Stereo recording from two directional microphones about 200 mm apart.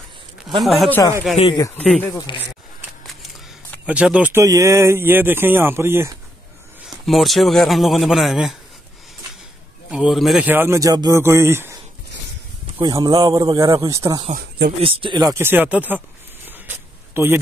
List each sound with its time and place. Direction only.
0.6 s a man's voice: centre (ahead or behind)
2.1 s speech: 20° left (ahead or behind)
3.8 s speech: 5° right (ahead or behind)
7.1 s a man's voice: centre (ahead or behind)
9.8 s speech: 5° right (ahead or behind)
12.8 s speech: 20° right (ahead or behind)
14.3 s speech: 50° right (ahead or behind)
14.8 s speech: 25° right (ahead or behind); by 16.0 s 10° right (ahead or behind)
16.4 s a sound: 10° right (ahead or behind)